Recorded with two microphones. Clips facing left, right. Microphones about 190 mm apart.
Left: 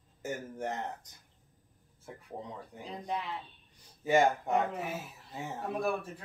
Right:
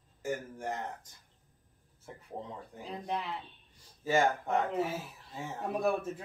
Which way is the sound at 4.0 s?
15° left (ahead or behind).